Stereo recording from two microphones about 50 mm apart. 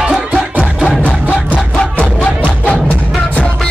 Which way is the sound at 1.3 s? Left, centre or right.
Left.